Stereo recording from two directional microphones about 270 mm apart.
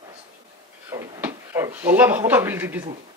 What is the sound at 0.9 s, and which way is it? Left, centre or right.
Speech, centre.